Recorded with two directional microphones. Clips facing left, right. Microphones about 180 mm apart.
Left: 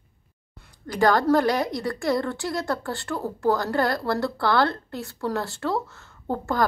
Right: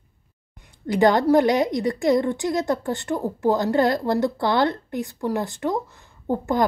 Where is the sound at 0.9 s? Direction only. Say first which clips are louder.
Right 3 dB; 20° right (ahead or behind).